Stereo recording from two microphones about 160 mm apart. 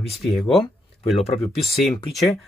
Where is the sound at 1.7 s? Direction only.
Centre (ahead or behind).